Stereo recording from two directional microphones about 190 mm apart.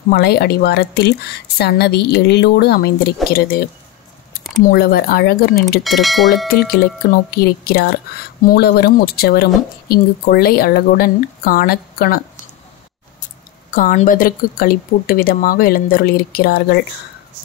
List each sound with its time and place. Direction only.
0.1 s speech: 55° left (ahead or behind)
4.6 s speech: 50° left (ahead or behind)
5.9 s speech: centre (ahead or behind)
6.5 s speech: 50° left (ahead or behind)
13.7 s speech: 45° left (ahead or behind)